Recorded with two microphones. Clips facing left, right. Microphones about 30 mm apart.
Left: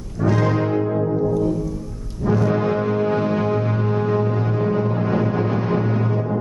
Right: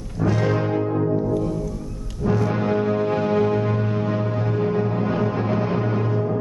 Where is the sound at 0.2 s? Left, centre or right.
Centre.